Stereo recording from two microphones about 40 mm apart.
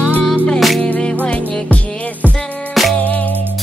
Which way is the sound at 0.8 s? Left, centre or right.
Left.